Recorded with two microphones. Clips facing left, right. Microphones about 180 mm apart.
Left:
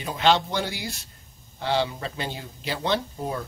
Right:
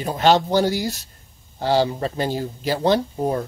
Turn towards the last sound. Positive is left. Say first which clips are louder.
# right 7 dB
turn(degrees=-40)  # may be behind; listen again after turning